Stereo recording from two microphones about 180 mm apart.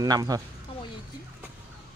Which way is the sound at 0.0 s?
20° right (ahead or behind).